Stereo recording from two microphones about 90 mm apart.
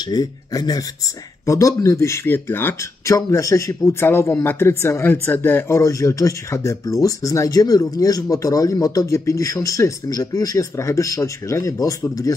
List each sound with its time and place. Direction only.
0.1 s a man's voice: 45° left (ahead or behind); by 2.7 s 25° left (ahead or behind)
3.1 s speech: 35° left (ahead or behind)